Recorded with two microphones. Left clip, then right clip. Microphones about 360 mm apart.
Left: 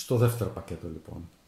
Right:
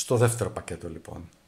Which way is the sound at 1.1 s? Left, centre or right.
Right.